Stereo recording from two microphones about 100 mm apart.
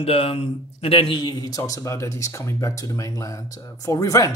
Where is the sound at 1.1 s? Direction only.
40° left (ahead or behind).